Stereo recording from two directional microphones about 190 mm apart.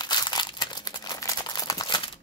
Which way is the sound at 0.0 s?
20° left (ahead or behind).